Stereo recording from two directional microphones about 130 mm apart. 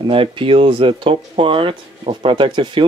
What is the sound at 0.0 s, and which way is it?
Speech, 45° right (ahead or behind).